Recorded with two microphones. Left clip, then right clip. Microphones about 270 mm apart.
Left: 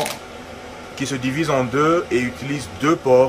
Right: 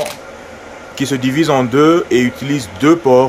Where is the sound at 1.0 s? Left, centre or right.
Right.